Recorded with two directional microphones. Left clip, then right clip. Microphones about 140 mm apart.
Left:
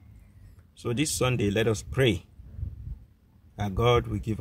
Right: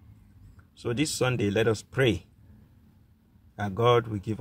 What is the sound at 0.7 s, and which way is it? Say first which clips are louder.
Speech: even; 15° left (ahead or behind).